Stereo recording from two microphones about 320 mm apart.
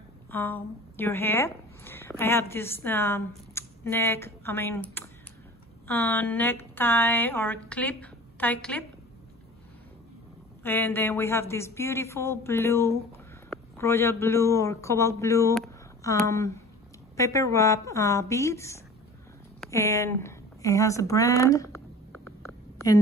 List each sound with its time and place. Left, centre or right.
0.3 s a woman's voice: centre
10.6 s speech: centre
13.5 s a sound: centre
14.2 s speech: centre